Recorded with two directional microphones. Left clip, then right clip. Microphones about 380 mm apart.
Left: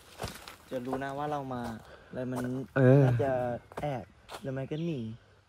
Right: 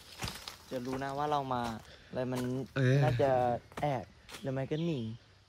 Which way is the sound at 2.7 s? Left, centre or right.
Centre.